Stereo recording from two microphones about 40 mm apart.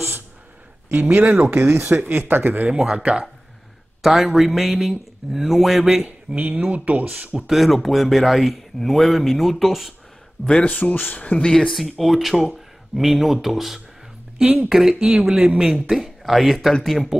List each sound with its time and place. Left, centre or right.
0.9 s speech: right
2.7 s speech: right
4.0 s speech: centre
6.0 s speech: right
7.1 s speech: right
7.4 s speech: centre
10.6 s speech: left
11.1 s speech: left
11.7 s speech: centre
15.0 s speech: right
15.9 s speech: centre